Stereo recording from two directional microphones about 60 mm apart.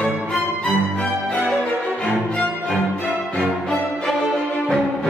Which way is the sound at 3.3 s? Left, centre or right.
Centre.